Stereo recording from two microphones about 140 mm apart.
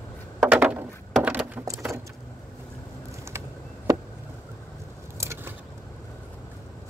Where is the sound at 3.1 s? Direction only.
20° right (ahead or behind).